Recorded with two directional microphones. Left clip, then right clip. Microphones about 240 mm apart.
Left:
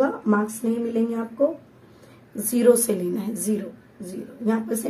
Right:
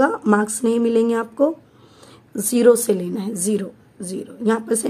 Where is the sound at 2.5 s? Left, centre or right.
Right.